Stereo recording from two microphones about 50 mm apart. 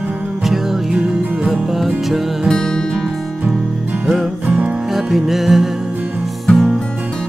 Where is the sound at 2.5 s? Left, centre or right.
Centre.